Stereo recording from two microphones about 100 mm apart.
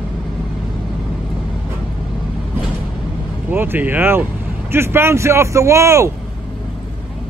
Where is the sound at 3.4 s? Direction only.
20° right (ahead or behind).